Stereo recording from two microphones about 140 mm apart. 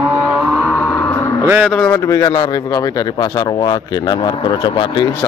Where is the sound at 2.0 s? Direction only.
25° left (ahead or behind).